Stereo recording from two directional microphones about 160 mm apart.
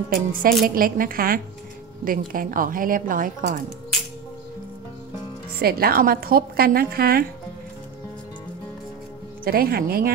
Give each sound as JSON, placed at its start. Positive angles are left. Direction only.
{"t": 0.1, "sound": "speech", "side_deg": -60}
{"t": 5.6, "sound": "a woman's voice", "side_deg": -70}
{"t": 9.4, "sound": "a woman's voice", "side_deg": -70}